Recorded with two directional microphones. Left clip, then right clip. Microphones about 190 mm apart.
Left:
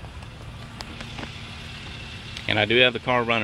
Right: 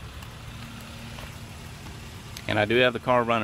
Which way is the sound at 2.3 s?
5° right (ahead or behind).